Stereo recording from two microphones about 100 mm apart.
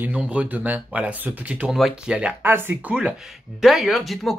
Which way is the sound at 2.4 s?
20° right (ahead or behind).